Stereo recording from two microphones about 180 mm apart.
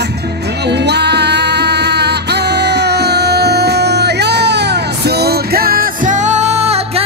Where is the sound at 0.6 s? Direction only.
70° right (ahead or behind).